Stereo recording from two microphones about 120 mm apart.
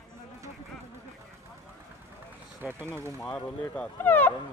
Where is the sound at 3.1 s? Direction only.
15° left (ahead or behind).